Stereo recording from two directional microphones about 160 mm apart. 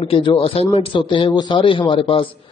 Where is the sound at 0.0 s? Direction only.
35° left (ahead or behind).